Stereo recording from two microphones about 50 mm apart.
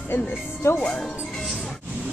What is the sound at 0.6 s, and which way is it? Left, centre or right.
Speech, left.